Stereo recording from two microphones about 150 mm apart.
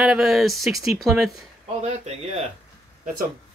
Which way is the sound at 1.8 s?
45° right (ahead or behind).